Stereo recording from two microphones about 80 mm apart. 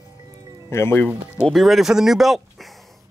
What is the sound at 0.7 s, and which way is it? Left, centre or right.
Speech, left.